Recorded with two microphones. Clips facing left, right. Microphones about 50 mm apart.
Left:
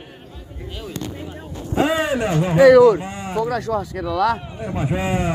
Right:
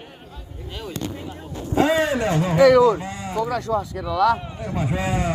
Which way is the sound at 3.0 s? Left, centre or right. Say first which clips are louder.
Left 2 dB; left.